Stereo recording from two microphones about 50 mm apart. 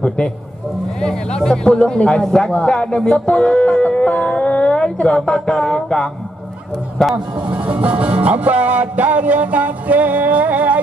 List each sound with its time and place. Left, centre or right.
1.0 s a man's voice: centre
7.4 s music: right